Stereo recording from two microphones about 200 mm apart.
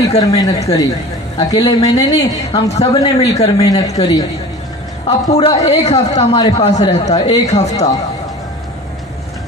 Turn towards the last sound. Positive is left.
turn(degrees=35)  # may be behind; listen again after turning